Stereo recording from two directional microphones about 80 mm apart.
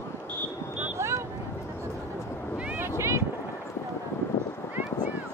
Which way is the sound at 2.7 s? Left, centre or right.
Right.